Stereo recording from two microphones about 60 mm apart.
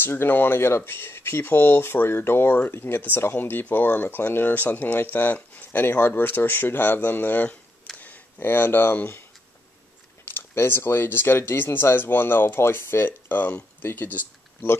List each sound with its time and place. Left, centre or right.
0.0 s speech: left
10.2 s speech: left